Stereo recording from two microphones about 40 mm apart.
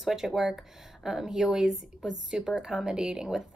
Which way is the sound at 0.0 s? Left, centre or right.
Centre.